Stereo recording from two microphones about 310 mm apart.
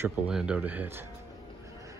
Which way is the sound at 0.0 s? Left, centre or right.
Centre.